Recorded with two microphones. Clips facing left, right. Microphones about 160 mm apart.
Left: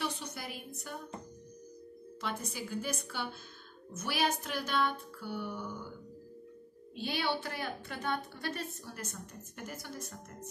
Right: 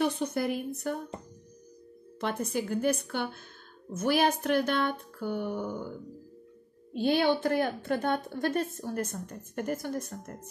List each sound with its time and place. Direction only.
0.0 s a woman's voice: 55° right (ahead or behind)
2.1 s a woman's voice: 55° right (ahead or behind)
6.9 s speech: 50° right (ahead or behind)